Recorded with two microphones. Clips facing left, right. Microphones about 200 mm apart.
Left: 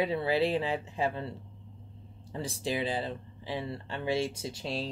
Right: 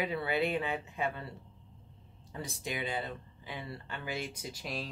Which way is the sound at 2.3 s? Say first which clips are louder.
Left 6 dB; 30° left (ahead or behind).